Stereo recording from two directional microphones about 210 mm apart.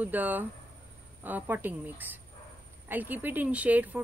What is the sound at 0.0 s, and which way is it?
Speech, 10° right (ahead or behind).